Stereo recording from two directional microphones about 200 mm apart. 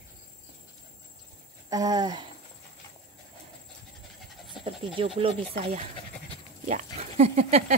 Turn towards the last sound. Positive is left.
turn(degrees=-30)  # may be behind; listen again after turning